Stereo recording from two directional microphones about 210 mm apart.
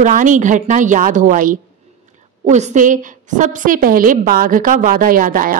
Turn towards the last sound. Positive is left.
turn(degrees=-40)  # may be behind; listen again after turning